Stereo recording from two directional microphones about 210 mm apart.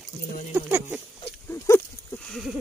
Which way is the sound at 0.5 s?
10° right (ahead or behind).